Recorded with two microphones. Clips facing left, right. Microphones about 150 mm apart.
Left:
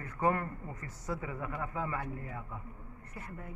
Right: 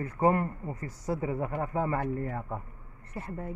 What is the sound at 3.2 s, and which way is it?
Speech, 30° right (ahead or behind).